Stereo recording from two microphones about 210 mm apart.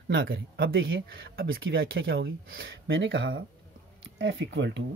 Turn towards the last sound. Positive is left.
turn(degrees=-55)  # may be behind; listen again after turning